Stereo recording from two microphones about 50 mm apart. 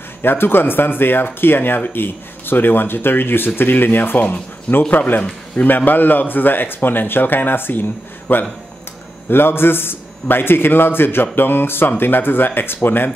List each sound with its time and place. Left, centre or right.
0.2 s a man's voice: left
8.3 s speech: left
9.3 s a man's voice: left